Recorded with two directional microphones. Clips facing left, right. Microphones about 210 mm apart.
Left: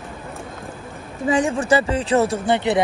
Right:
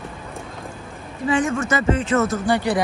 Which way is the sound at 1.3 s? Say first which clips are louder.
Left 2 dB; 35° left (ahead or behind).